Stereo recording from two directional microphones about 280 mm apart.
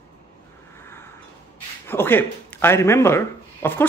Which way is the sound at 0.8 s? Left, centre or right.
Centre.